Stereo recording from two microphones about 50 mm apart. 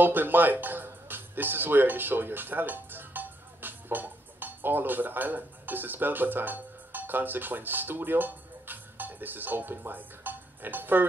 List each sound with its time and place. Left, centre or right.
0.0 s speech: right